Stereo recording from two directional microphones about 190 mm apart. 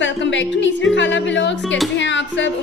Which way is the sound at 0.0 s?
70° left (ahead or behind).